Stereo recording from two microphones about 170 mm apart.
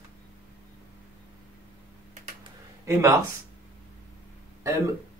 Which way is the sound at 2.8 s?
15° right (ahead or behind).